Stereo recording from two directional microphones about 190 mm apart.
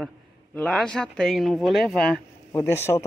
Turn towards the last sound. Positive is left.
turn(degrees=15)  # may be behind; listen again after turning